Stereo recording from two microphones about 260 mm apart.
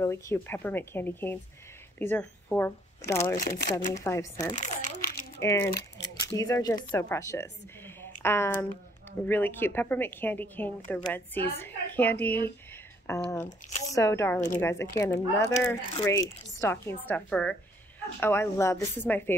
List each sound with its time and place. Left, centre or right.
0.0 s speech: centre
3.3 s speech: left
4.0 s speech: centre
4.6 s crumpling: left
5.4 s a woman's voice: centre
13.5 s squish: left
13.8 s speech: centre